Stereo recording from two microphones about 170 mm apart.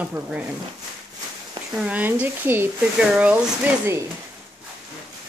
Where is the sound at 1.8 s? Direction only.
10° right (ahead or behind).